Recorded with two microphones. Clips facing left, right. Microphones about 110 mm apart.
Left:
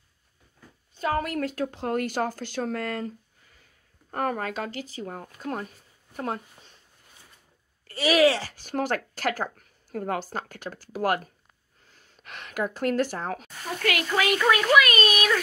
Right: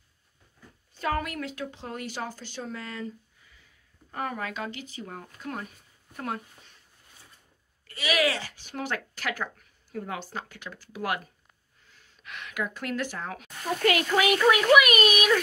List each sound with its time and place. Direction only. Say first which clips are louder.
1.0 s speech: left 3 dB; 35° left (ahead or behind)
7.8 s speech: left 6 dB; 35° left (ahead or behind)
13.8 s speech: right 2 dB; 20° right (ahead or behind)